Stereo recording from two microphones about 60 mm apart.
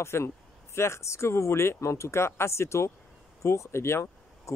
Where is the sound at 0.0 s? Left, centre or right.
Left.